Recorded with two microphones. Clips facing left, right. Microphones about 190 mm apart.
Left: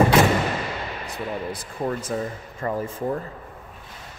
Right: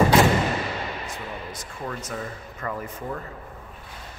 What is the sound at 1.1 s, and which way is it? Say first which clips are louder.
Speech: left 6 dB; 35° left (ahead or behind).